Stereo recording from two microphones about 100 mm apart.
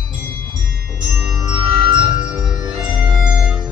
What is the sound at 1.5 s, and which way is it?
Music, 55° right (ahead or behind).